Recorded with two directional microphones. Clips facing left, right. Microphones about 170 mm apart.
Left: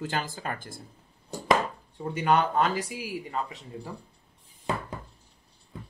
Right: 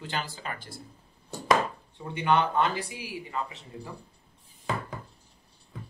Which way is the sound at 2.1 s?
40° left (ahead or behind).